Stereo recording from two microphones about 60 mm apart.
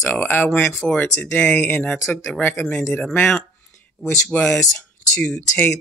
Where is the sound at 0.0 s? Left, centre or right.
Left.